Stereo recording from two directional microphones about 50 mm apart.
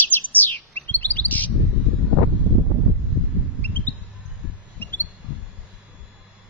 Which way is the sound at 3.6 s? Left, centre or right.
Left.